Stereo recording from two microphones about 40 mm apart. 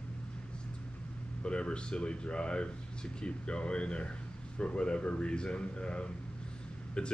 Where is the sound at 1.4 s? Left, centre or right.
Left.